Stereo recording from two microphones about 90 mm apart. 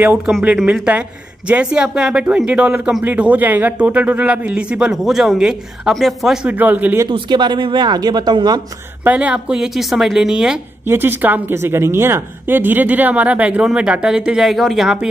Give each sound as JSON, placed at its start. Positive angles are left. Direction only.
{"t": 0.9, "sound": "a man's voice", "side_deg": -15}
{"t": 6.4, "sound": "a woman's voice", "side_deg": -20}
{"t": 7.1, "sound": "speech", "side_deg": -60}
{"t": 9.0, "sound": "a man's voice", "side_deg": -15}
{"t": 10.9, "sound": "a woman's voice", "side_deg": -25}